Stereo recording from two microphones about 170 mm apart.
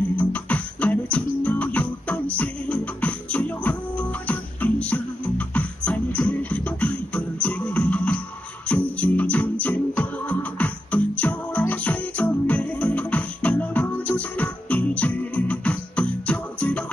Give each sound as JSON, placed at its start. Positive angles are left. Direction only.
{"t": 0.1, "sound": "music", "side_deg": 5}